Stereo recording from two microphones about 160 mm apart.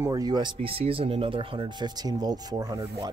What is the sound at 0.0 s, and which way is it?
Speech, 25° right (ahead or behind).